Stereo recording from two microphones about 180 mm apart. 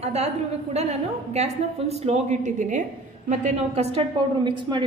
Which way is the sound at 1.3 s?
35° right (ahead or behind).